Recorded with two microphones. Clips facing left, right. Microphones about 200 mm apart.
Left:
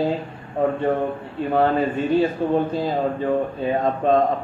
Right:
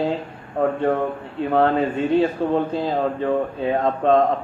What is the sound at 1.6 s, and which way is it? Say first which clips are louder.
Speech: right 1 dB; centre (ahead or behind).